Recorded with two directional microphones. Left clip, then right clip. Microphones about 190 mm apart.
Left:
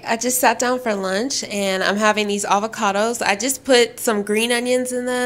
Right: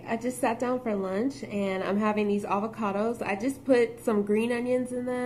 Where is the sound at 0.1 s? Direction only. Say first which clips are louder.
Left 11 dB; 30° left (ahead or behind).